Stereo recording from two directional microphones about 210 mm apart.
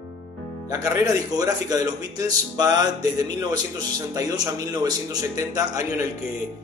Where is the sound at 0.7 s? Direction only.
15° right (ahead or behind).